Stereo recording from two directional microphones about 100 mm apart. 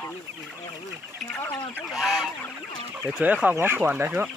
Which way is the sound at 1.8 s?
Centre (ahead or behind).